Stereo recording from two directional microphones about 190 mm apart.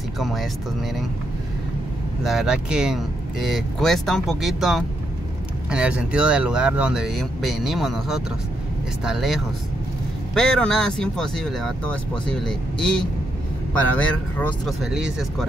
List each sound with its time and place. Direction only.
0.2 s speech: centre (ahead or behind)
2.2 s speech: 5° right (ahead or behind)